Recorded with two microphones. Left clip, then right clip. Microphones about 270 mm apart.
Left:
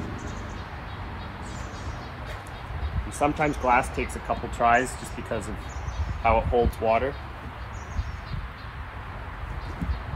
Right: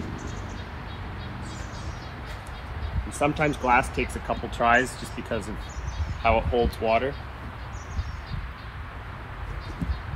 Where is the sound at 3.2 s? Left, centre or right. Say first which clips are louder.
Even; centre.